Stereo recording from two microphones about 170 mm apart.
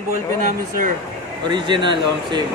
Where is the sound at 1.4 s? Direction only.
25° right (ahead or behind).